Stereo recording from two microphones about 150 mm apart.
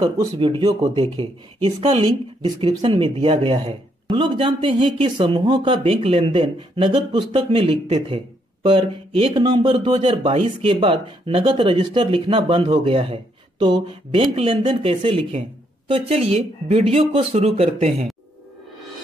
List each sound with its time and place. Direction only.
0.2 s speech: 30° right (ahead or behind)